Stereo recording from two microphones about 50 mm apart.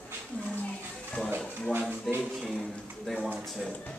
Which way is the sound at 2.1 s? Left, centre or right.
Centre.